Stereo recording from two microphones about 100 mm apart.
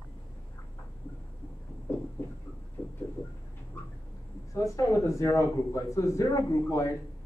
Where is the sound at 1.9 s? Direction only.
25° left (ahead or behind).